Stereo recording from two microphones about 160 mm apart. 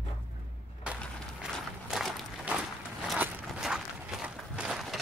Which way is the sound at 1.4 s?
Centre (ahead or behind).